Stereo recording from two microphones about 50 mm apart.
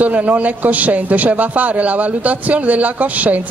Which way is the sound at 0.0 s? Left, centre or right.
Right.